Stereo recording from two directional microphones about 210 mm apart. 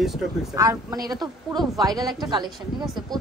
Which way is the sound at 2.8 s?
Centre (ahead or behind).